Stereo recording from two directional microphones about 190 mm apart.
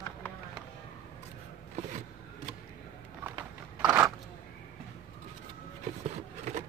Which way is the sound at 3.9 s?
15° right (ahead or behind).